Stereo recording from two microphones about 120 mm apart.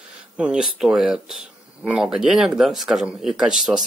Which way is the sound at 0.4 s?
5° right (ahead or behind).